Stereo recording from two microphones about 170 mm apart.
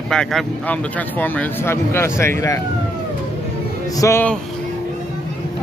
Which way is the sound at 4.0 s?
15° left (ahead or behind).